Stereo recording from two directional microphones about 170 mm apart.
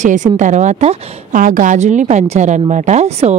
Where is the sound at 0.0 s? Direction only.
45° right (ahead or behind).